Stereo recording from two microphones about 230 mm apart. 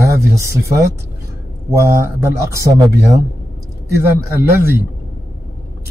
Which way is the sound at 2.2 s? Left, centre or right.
Centre.